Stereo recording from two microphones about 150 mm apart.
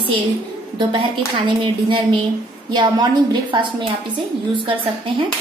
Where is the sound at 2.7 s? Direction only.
30° right (ahead or behind).